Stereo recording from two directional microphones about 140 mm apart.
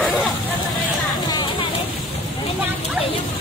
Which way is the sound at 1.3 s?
40° left (ahead or behind).